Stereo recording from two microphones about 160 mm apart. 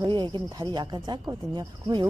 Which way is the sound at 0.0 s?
30° right (ahead or behind).